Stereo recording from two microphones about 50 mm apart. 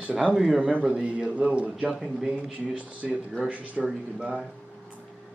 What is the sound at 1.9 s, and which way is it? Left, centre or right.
Speech, centre.